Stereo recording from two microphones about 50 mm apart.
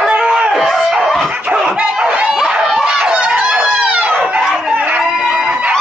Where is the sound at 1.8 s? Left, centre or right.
Centre.